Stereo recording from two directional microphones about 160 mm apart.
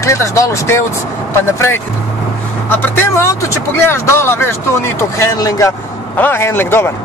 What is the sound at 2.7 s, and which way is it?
Speech, 15° left (ahead or behind).